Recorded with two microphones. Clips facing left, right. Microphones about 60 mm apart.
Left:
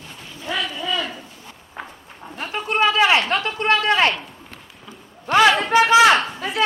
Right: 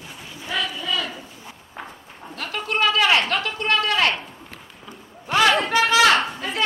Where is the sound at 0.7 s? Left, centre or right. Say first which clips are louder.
Left 2 dB; centre.